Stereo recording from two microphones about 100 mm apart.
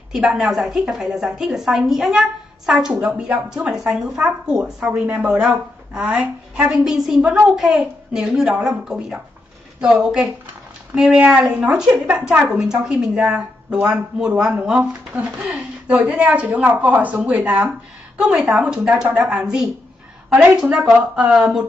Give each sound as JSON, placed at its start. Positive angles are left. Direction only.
{"t": 0.1, "sound": "a woman's voice", "side_deg": -5}
{"t": 11.5, "sound": "a woman's voice", "side_deg": -15}
{"t": 15.2, "sound": "speech", "side_deg": -5}
{"t": 15.9, "sound": "a woman's voice", "side_deg": -15}